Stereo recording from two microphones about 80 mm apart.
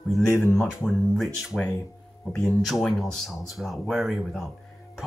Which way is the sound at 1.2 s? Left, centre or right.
Centre.